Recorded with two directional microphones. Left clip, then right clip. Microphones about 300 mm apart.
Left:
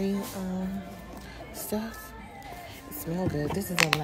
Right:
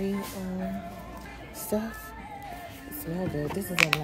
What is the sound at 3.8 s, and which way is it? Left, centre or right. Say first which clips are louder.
Speech: right 1 dB; left.